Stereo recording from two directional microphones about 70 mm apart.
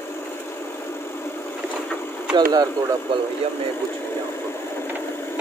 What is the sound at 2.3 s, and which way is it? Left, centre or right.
Speech, right.